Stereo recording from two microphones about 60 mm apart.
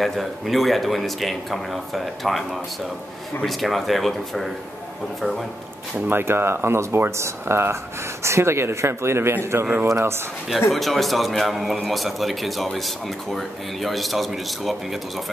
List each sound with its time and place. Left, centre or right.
0.0 s a man's voice: centre
5.9 s speech: right
10.7 s a man's voice: centre